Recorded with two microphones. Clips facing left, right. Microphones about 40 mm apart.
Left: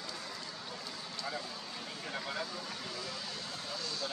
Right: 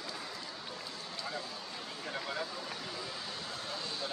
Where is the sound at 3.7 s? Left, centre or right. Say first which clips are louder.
Left 1 dB; right.